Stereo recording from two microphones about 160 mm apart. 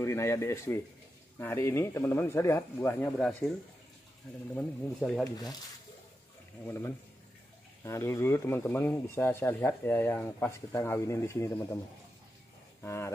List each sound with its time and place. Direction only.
0.0 s speech: 15° left (ahead or behind)
4.6 s speech: 5° left (ahead or behind)
5.2 s speech: 25° left (ahead or behind)
7.8 s speech: 20° left (ahead or behind)
12.8 s speech: 15° left (ahead or behind)